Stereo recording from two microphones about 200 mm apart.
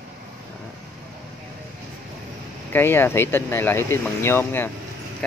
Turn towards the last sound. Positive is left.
turn(degrees=10)  # may be behind; listen again after turning